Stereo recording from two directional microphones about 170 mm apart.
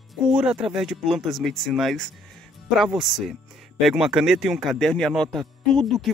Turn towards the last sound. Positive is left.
turn(degrees=0)  # may be behind; listen again after turning